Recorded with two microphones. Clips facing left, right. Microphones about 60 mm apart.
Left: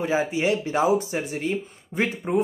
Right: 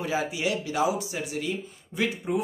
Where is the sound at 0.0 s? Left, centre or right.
Left.